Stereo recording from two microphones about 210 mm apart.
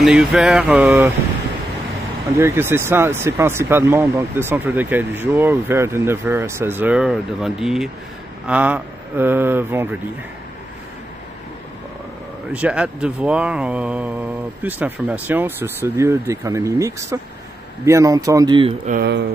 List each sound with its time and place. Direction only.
0.0 s a sound: centre (ahead or behind)
2.3 s speech: 10° right (ahead or behind)
12.5 s speech: 5° right (ahead or behind); by 18.8 s 25° right (ahead or behind)
18.9 s speech: 50° right (ahead or behind)